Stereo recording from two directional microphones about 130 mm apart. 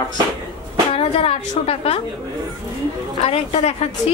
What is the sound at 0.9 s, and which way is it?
A woman's voice, 50° left (ahead or behind).